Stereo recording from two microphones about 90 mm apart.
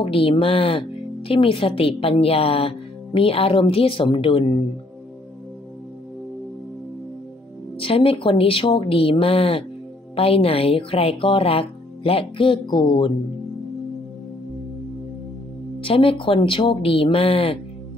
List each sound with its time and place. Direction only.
0.0 s speech: 90° left
7.8 s speech: 90° left; by 13.1 s 65° left (ahead or behind)
15.8 s speech: 85° left